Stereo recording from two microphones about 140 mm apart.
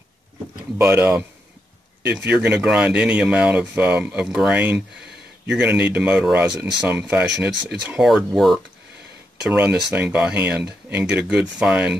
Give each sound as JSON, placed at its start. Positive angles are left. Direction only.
{"t": 0.7, "sound": "speech", "side_deg": -15}